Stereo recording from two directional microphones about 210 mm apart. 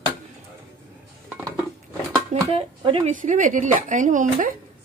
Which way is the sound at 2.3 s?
30° right (ahead or behind).